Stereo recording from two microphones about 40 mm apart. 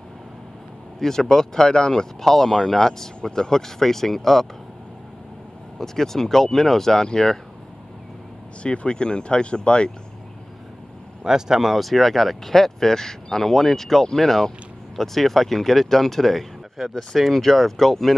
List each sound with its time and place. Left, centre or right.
0.9 s speech: centre
5.8 s speech: centre
8.6 s speech: left
11.2 s speech: centre
11.7 s speech: centre